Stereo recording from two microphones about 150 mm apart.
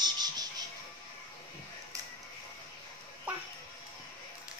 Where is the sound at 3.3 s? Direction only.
10° right (ahead or behind).